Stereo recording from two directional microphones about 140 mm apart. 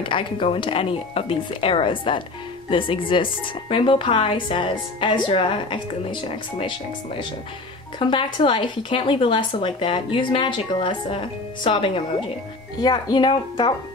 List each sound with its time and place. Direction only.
0.0 s speech: 35° left (ahead or behind)
8.0 s speech: 35° left (ahead or behind)